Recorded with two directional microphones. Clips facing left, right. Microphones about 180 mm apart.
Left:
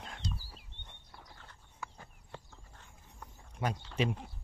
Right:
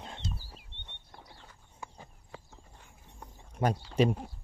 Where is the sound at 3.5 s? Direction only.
45° right (ahead or behind).